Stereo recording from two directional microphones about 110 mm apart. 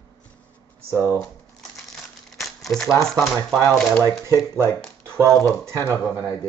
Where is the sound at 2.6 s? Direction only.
Centre (ahead or behind).